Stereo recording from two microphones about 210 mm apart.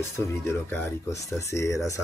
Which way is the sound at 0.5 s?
15° left (ahead or behind).